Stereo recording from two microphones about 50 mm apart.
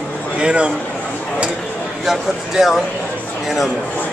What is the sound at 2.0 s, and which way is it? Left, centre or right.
Speech, centre.